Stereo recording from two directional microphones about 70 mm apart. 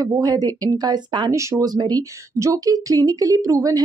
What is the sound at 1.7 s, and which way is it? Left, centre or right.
Speech, right.